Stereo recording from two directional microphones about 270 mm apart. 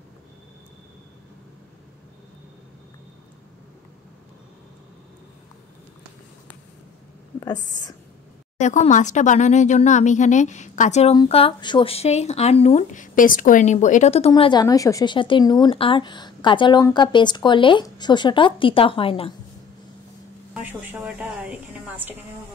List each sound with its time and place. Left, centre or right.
7.3 s speech: centre
8.5 s speech: left
20.6 s a woman's voice: centre